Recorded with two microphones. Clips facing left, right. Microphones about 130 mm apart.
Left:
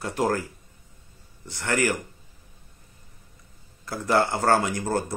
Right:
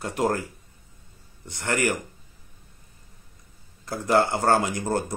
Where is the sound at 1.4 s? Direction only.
20° right (ahead or behind).